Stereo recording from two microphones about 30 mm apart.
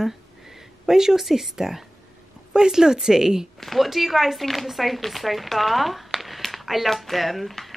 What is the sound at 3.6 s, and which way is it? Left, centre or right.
Speech, centre.